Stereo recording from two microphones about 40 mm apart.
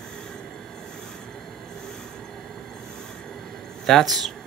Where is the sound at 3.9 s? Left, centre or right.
Centre.